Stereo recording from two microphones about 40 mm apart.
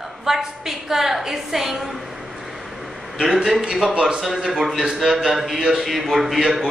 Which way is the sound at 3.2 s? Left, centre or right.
Centre.